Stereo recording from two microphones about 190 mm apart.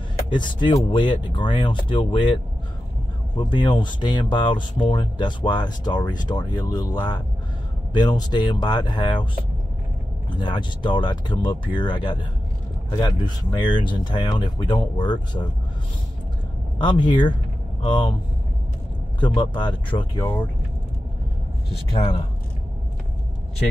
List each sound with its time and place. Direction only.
0.3 s speech: 25° left (ahead or behind)
16.8 s speech: 25° left (ahead or behind)
19.1 s speech: 25° left (ahead or behind)
20.2 s speech: 10° left (ahead or behind)
21.9 s speech: 30° left (ahead or behind)